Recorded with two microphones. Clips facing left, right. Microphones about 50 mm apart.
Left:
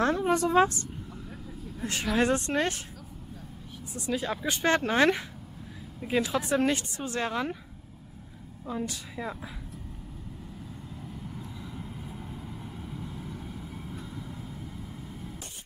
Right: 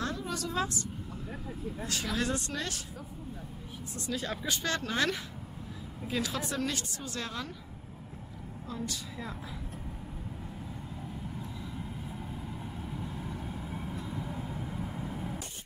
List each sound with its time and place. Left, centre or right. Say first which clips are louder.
0.0 s a woman's voice: left 10 dB; left
1.9 s speech: left 7 dB; left
3.9 s speech: left 5 dB; centre
4.5 s speech: left 9 dB; left
8.7 s speech: left 4 dB; centre
11.2 s vehicle: even; centre
14.2 s vehicle: right 3 dB; right